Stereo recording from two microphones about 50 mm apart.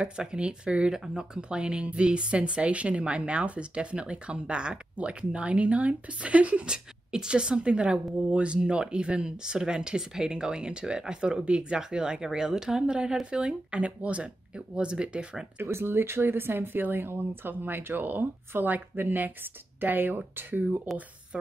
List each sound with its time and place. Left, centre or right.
0.0 s speech: centre
15.5 s speech: right